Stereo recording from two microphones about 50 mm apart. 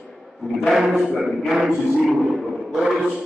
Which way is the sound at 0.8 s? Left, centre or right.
Centre.